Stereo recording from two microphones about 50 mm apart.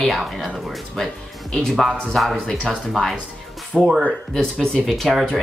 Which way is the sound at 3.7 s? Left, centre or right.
Centre.